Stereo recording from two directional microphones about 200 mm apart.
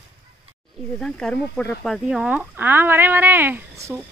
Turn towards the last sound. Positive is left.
turn(degrees=-15)  # may be behind; listen again after turning